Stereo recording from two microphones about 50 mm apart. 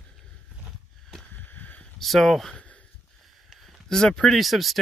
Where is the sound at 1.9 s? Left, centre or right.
Centre.